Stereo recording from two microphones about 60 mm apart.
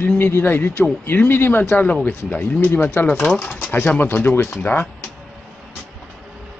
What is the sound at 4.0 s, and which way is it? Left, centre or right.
Speech, left.